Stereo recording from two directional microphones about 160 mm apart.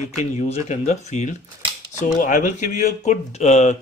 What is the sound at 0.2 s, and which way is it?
Speech, 40° left (ahead or behind).